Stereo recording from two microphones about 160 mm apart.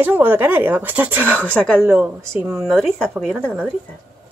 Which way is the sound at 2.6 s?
Centre (ahead or behind).